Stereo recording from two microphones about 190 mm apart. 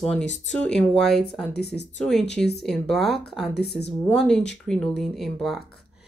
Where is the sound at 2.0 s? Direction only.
Centre (ahead or behind).